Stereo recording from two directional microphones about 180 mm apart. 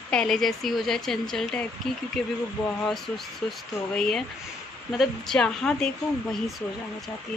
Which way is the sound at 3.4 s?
5° left (ahead or behind).